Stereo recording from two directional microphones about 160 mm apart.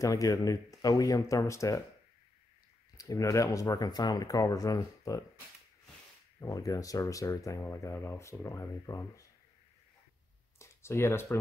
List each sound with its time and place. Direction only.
0.0 s speech: 20° left (ahead or behind)
3.0 s speech: 20° left (ahead or behind)
6.4 s speech: 20° left (ahead or behind)
10.6 s a sound: 15° left (ahead or behind)